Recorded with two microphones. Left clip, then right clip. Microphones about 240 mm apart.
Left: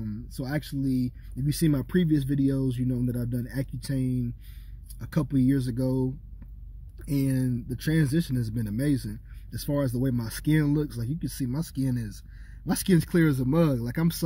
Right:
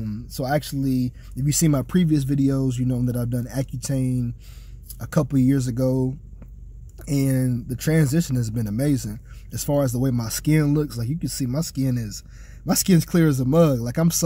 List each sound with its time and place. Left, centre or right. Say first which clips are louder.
0.0 s speech: right 8 dB; centre